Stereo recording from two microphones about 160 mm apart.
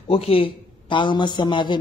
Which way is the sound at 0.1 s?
35° left (ahead or behind).